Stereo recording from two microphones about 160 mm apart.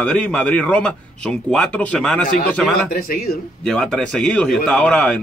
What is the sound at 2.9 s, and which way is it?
Speech, 70° left (ahead or behind).